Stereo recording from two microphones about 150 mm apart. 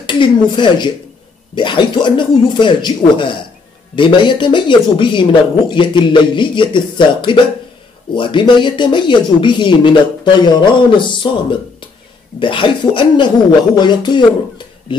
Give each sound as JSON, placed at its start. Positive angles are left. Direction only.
{"t": 0.0, "sound": "speech", "side_deg": 30}
{"t": 12.4, "sound": "speech", "side_deg": 35}